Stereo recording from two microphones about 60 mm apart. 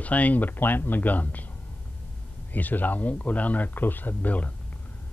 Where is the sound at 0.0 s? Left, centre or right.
Left.